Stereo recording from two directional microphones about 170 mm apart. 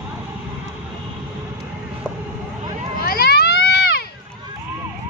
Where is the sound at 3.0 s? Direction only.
65° left (ahead or behind).